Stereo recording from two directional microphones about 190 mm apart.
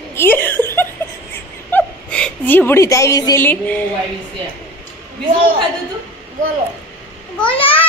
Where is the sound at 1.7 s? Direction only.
5° left (ahead or behind).